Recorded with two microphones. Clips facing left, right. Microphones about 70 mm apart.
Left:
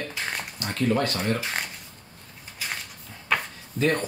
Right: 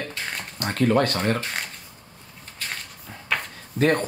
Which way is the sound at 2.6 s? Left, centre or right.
Centre.